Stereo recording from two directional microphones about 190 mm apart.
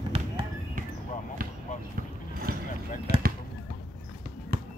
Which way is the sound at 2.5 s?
50° right (ahead or behind).